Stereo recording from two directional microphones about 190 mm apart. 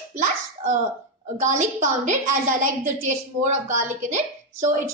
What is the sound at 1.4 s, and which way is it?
A woman's voice, 40° right (ahead or behind).